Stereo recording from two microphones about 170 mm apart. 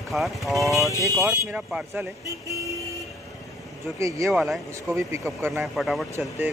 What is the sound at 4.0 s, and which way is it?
Speech, 20° right (ahead or behind).